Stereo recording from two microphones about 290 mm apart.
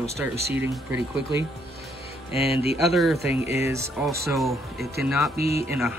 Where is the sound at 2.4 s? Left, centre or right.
Left.